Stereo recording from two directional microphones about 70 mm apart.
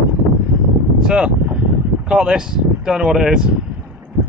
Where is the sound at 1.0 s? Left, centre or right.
Centre.